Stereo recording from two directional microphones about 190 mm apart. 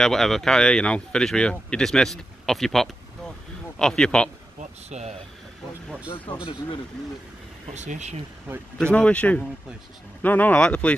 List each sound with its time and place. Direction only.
0.0 s speech: centre (ahead or behind)
4.8 s speech: 35° right (ahead or behind)
6.0 s speech: 25° left (ahead or behind)
7.7 s speech: 40° right (ahead or behind)
8.9 s speech: 5° left (ahead or behind)